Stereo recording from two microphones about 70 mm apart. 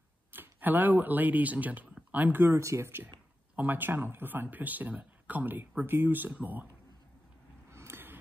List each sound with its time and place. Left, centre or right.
0.3 s speech: right
2.5 s speech: right
7.7 s a sound: right